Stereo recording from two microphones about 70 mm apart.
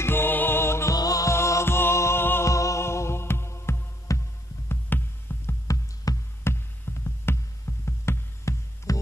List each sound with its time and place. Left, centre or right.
0.0 s music: left
0.9 s music: left
1.3 s music: left
2.4 s music: left
4.6 s music: left
6.1 s music: left
6.4 s music: left
8.9 s music: left